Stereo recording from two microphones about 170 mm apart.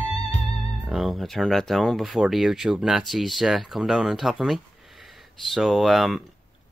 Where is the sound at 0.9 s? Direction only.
Centre (ahead or behind).